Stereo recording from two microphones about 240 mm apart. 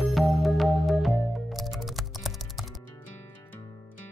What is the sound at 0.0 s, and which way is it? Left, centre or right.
Music, centre.